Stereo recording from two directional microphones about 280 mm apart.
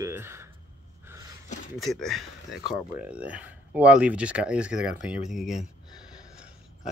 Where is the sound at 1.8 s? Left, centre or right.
Centre.